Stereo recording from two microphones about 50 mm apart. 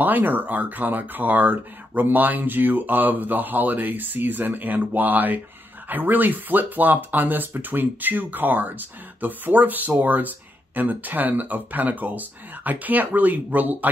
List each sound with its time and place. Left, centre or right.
0.0 s speech: right